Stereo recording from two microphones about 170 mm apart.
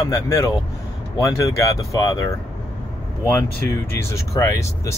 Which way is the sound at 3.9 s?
15° left (ahead or behind).